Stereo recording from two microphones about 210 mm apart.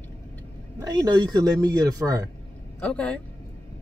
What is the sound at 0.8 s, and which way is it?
Speech, 15° right (ahead or behind).